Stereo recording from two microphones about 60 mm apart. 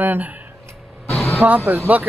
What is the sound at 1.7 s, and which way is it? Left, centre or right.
Speech, right.